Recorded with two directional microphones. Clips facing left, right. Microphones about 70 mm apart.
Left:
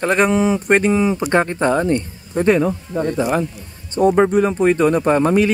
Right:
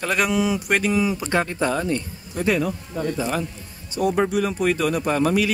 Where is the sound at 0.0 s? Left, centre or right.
Left.